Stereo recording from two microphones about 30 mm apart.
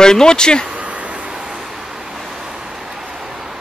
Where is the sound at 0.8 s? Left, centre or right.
Right.